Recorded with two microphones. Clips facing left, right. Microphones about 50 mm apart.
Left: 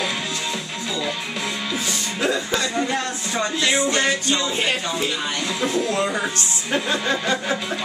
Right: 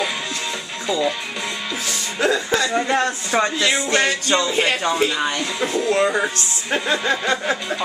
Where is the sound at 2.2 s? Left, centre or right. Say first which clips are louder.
Right 4 dB; right.